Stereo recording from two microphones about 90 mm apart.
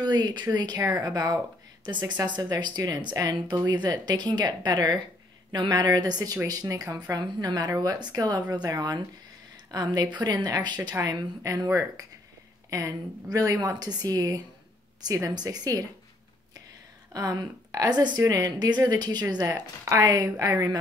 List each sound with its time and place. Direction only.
0.0 s speech: 50° right (ahead or behind)
7.2 s speech: 50° right (ahead or behind)
17.1 s speech: 45° right (ahead or behind)
20.2 s speech: 35° right (ahead or behind)